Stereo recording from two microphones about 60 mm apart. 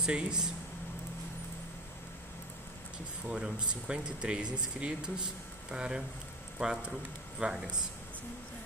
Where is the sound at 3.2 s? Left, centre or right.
Centre.